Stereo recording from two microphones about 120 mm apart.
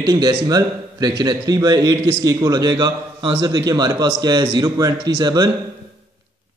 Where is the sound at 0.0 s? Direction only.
35° right (ahead or behind).